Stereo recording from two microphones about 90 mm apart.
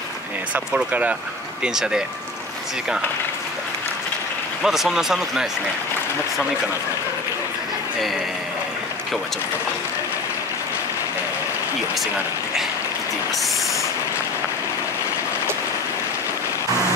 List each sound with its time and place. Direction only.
0.7 s speech: 15° right (ahead or behind)
4.6 s speech: 5° right (ahead or behind)